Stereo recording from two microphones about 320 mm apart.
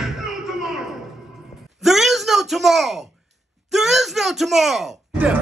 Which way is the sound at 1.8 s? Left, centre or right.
Centre.